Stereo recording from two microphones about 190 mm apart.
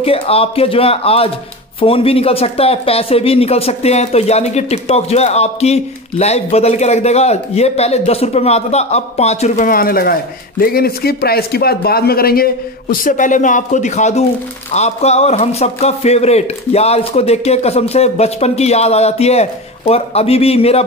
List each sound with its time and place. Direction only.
0.0 s speech: 30° left (ahead or behind)
9.7 s speech: 50° left (ahead or behind); by 20.8 s 30° left (ahead or behind)